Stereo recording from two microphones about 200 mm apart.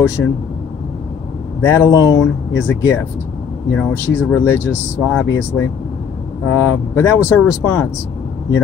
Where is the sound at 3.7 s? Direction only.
10° left (ahead or behind).